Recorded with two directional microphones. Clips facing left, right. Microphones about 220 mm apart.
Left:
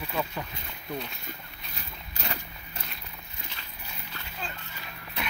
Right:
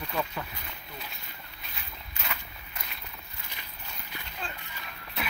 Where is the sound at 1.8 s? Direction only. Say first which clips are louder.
Left 4 dB; 35° left (ahead or behind).